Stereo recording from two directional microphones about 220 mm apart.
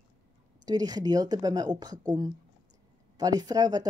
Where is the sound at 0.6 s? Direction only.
15° right (ahead or behind).